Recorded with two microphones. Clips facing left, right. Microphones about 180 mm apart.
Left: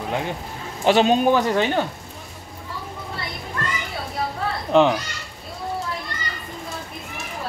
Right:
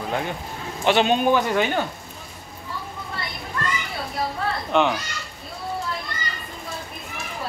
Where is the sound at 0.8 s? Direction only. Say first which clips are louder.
Left 2 dB; 35° left (ahead or behind).